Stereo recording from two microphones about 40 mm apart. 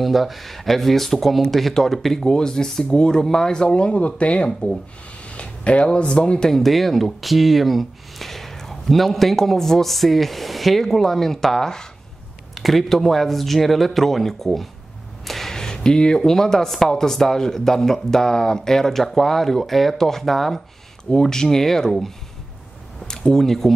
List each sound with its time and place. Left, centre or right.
0.0 s speech: centre
3.6 s speech: left
6.4 s speech: centre
12.5 s a sound: centre
12.8 s speech: centre